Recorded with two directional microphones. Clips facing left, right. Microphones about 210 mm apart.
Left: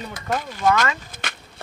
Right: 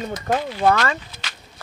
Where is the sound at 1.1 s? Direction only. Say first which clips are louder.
Left 5 dB; 50° left (ahead or behind).